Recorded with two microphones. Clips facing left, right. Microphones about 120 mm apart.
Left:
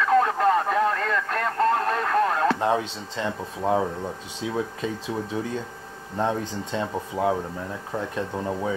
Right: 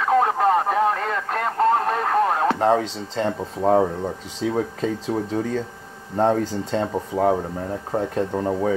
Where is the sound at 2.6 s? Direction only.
40° right (ahead or behind).